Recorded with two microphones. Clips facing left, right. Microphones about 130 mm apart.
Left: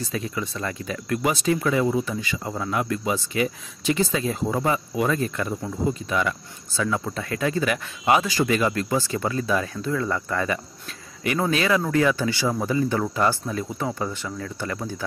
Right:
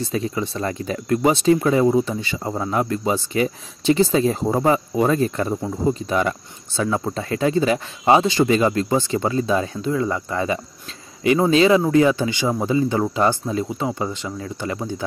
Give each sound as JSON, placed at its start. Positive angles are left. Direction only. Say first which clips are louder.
{"t": 0.0, "sound": "speech", "louder": "right 5 dB", "side_deg": -30}